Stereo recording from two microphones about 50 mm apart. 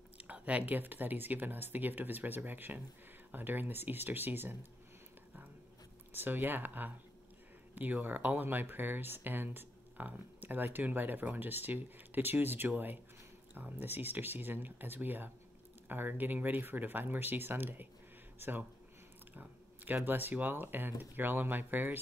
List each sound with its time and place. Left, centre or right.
0.2 s speech: right
6.1 s speech: right
19.3 s speech: right